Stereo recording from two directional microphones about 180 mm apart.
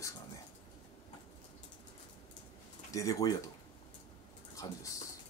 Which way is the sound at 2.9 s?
20° left (ahead or behind).